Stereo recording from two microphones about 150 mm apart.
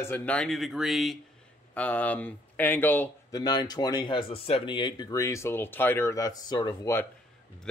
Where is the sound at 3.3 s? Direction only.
25° left (ahead or behind).